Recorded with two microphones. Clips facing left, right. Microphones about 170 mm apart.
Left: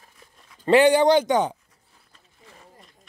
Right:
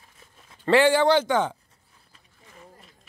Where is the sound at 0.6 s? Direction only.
20° left (ahead or behind).